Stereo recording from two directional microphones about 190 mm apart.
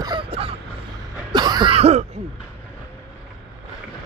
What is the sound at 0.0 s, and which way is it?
Vehicle, 25° right (ahead or behind).